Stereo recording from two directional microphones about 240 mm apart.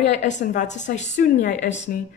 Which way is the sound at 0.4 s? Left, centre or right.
Left.